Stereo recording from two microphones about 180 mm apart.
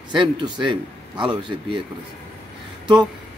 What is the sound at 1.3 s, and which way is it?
Speech, 25° right (ahead or behind).